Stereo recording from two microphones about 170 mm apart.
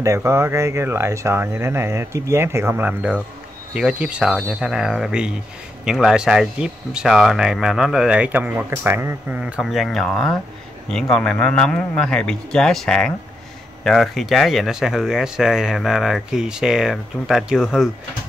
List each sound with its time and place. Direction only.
0.0 s speech: 15° right (ahead or behind)